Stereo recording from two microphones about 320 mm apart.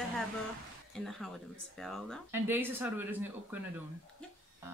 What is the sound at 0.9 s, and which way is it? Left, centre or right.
Speech, centre.